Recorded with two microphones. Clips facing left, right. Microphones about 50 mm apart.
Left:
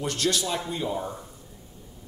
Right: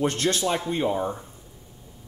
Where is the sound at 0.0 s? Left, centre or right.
Right.